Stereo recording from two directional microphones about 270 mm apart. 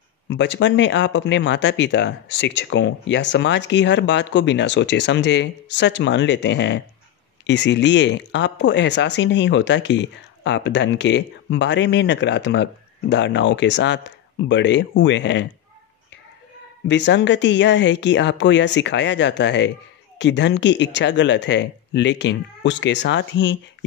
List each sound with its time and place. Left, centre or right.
0.3 s speech: left
16.8 s speech: left